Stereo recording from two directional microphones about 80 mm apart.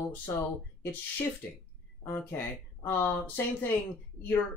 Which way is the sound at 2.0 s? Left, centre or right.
Left.